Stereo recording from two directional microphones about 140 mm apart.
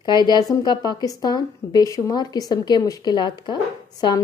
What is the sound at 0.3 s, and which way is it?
A woman's voice, 30° left (ahead or behind).